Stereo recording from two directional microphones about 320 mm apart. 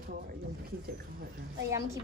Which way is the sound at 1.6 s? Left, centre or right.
Centre.